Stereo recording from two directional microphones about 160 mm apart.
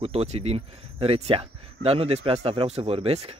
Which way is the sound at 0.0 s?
40° right (ahead or behind).